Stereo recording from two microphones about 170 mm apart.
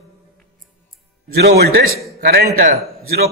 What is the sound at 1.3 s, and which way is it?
A man's voice, 75° right (ahead or behind).